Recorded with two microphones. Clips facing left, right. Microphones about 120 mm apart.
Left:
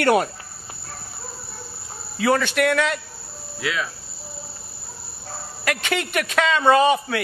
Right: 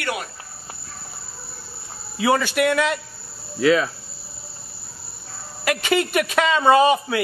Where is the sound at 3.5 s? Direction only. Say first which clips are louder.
Right 10 dB; 35° right (ahead or behind).